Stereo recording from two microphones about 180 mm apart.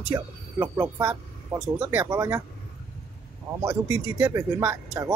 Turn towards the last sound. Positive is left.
turn(degrees=-15)  # may be behind; listen again after turning